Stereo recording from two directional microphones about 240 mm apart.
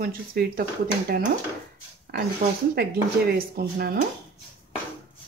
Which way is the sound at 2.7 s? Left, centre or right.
Right.